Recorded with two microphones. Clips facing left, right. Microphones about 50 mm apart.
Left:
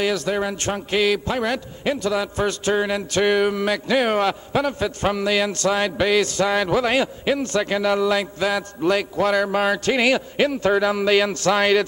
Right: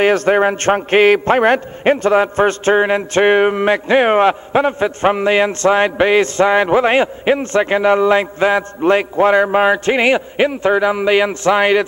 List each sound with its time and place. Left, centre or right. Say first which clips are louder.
0.0 s a man's voice: right 9 dB; right